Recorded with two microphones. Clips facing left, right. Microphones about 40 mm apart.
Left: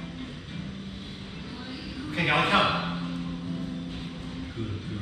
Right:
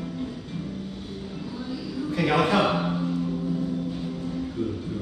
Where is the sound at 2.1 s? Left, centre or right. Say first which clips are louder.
Right 1 dB; left.